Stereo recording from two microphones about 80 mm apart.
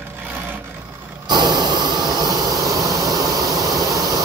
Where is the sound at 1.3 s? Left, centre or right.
Right.